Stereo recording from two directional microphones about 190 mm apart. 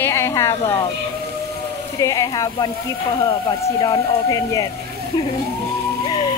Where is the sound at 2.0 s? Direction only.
20° left (ahead or behind).